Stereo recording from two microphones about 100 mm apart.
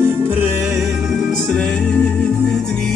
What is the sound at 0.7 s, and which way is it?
Music, centre (ahead or behind).